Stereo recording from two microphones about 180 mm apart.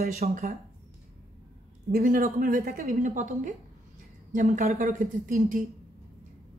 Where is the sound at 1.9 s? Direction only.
50° right (ahead or behind).